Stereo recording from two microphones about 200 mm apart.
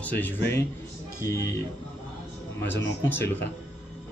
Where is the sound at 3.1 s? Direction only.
10° left (ahead or behind).